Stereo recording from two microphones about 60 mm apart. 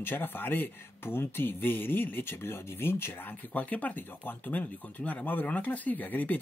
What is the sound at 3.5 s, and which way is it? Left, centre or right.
Speech, left.